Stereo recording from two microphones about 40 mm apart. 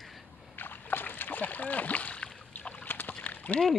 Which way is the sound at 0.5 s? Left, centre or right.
Left.